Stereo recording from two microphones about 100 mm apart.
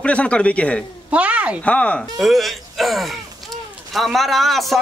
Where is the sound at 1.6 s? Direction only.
10° left (ahead or behind).